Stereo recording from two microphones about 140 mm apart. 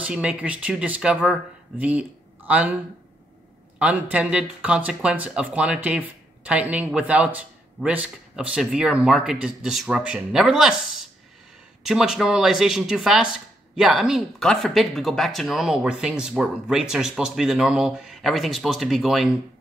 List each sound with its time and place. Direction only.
0.0 s speech: 10° right (ahead or behind)
3.8 s speech: 10° right (ahead or behind)